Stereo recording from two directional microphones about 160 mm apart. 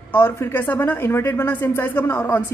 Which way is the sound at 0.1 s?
15° left (ahead or behind).